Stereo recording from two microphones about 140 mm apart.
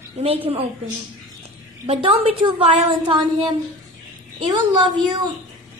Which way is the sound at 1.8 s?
50° right (ahead or behind).